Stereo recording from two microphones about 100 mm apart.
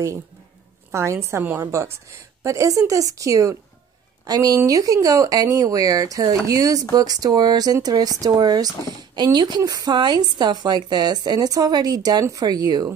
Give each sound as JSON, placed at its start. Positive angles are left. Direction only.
{"t": 0.9, "sound": "a woman's voice", "side_deg": -30}